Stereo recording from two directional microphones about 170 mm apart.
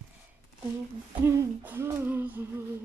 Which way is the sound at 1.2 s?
15° right (ahead or behind).